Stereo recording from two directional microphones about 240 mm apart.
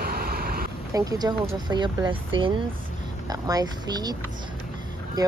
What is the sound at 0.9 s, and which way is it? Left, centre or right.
Speech, centre.